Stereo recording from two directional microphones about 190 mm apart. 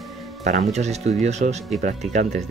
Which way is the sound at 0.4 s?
35° right (ahead or behind).